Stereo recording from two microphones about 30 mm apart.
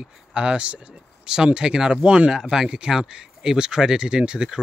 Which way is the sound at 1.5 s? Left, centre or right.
Right.